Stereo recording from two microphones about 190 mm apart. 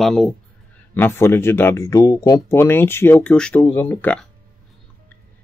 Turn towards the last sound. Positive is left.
turn(degrees=10)  # may be behind; listen again after turning